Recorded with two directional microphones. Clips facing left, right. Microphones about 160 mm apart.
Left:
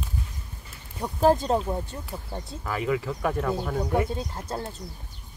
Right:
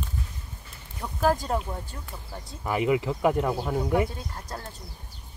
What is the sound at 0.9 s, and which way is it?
Speech, 25° left (ahead or behind).